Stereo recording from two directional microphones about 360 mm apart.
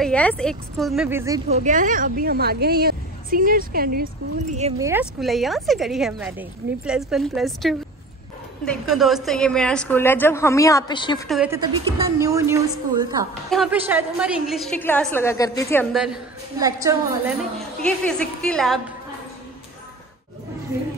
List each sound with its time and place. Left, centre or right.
0.0 s a woman's voice: centre; by 4.1 s right
4.6 s a woman's voice: centre
11.2 s a woman's voice: centre
16.5 s a woman's voice: centre
17.4 s a woman's voice: centre